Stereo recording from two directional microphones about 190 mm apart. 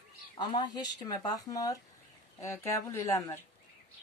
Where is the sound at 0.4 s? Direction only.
25° left (ahead or behind).